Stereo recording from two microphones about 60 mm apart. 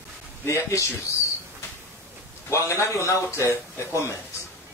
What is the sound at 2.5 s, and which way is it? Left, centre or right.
A man's voice, left.